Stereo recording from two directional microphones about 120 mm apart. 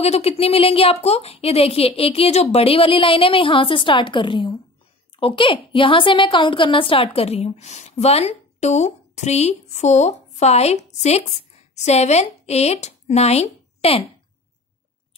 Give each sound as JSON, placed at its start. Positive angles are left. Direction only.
{"t": 0.0, "sound": "a woman's voice", "side_deg": 60}